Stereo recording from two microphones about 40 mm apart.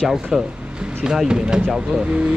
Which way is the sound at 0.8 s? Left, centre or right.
Right.